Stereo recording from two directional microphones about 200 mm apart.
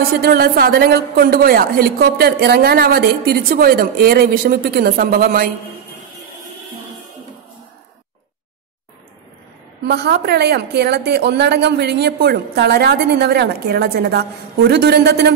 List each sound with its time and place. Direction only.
0.1 s a woman's voice: 45° right (ahead or behind)
9.8 s a woman's voice: 55° right (ahead or behind)